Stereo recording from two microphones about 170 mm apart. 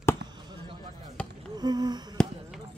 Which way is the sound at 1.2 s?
5° left (ahead or behind).